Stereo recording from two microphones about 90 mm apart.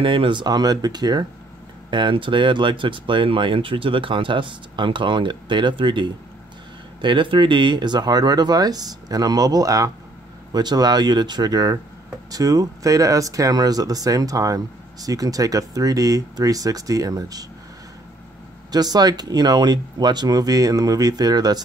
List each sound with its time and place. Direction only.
0.0 s speech: 70° right (ahead or behind); by 1.2 s 50° right (ahead or behind)
1.9 s speech: 65° right (ahead or behind); by 17.5 s 45° right (ahead or behind)
18.7 s speech: 50° right (ahead or behind)